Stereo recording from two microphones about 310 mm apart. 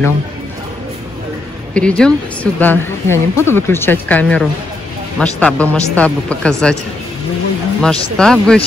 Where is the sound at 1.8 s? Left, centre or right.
Centre.